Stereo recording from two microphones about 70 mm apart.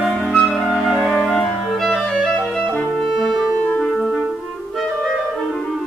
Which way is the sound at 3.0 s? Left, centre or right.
Centre.